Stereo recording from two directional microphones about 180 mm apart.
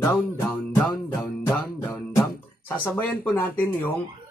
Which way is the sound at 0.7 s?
20° left (ahead or behind).